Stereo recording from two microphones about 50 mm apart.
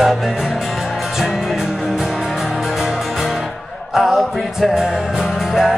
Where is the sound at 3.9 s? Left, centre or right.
Centre.